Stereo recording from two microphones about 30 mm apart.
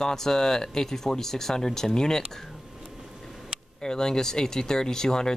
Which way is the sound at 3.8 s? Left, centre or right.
Left.